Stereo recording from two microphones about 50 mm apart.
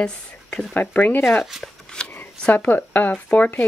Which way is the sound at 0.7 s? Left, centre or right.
Left.